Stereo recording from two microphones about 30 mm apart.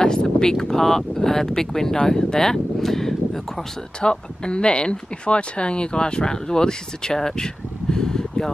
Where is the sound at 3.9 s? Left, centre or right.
Left.